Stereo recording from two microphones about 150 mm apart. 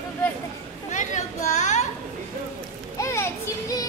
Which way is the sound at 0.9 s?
55° left (ahead or behind).